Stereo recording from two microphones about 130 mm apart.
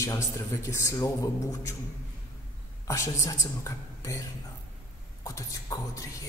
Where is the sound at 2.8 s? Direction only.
25° left (ahead or behind).